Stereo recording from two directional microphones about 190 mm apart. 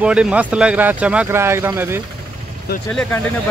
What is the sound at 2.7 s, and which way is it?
Speech, 55° left (ahead or behind).